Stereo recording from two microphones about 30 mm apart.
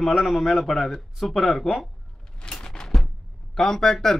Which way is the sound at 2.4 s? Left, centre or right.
Left.